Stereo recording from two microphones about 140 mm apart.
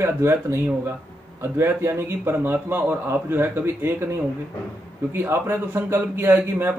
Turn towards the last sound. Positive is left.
turn(degrees=-15)  # may be behind; listen again after turning